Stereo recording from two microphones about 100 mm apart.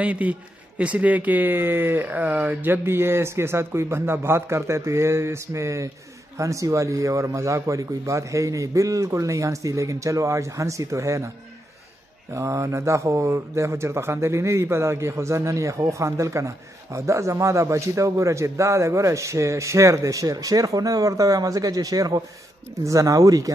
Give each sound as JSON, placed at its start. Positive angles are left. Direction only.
{"t": 0.0, "sound": "speech", "side_deg": -15}
{"t": 12.4, "sound": "speech", "side_deg": -30}